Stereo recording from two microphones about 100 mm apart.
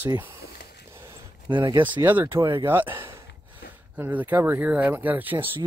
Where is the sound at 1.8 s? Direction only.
20° right (ahead or behind).